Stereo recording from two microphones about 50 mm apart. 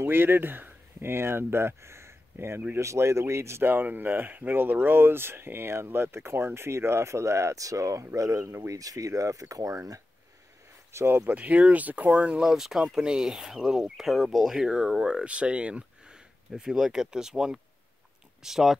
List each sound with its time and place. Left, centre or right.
0.0 s speech: right
2.7 s speech: right
3.6 s speech: right
10.9 s speech: right
11.2 s speech: right
12.4 s speech: centre
16.6 s speech: centre